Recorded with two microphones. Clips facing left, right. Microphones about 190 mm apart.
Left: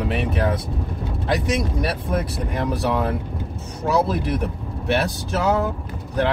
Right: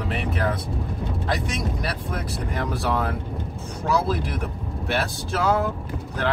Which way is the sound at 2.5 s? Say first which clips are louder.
Left 3 dB; 20° left (ahead or behind).